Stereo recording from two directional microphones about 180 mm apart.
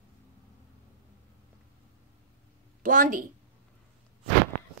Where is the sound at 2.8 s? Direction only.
45° right (ahead or behind).